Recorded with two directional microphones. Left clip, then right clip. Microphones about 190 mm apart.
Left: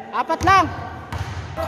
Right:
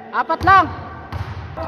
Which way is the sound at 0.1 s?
5° left (ahead or behind).